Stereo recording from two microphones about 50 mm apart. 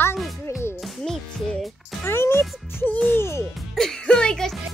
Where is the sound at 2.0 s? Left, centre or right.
Left.